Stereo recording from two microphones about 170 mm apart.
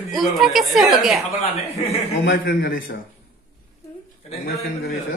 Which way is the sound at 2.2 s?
90° left.